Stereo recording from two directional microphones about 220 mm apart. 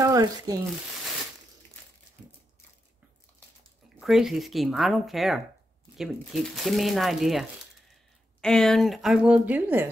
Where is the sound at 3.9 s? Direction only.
Centre (ahead or behind).